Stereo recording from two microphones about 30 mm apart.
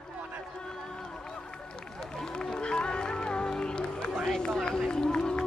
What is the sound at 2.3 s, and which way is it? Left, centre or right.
Music, left.